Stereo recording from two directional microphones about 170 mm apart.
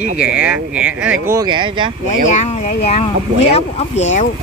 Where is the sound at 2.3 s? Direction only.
45° left (ahead or behind).